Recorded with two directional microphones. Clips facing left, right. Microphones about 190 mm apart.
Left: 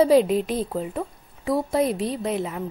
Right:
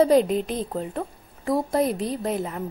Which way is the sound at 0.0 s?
Centre (ahead or behind).